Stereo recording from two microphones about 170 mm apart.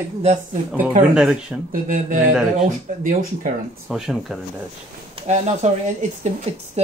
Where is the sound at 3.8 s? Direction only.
5° right (ahead or behind).